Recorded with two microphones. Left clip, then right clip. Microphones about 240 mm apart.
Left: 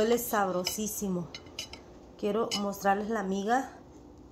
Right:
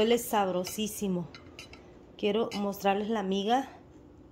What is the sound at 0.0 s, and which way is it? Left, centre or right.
Speech, centre.